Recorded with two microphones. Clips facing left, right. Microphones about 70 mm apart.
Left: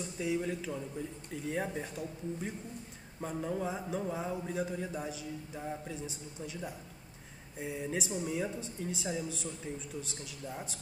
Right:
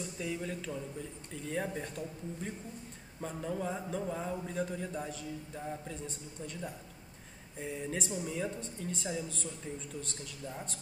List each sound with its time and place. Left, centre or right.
0.2 s a man's voice: centre